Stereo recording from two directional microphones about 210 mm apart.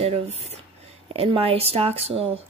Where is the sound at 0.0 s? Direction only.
30° right (ahead or behind).